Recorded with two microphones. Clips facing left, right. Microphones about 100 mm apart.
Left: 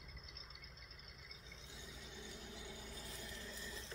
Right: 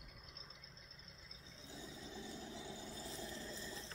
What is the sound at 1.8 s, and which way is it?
Vehicle, 35° right (ahead or behind).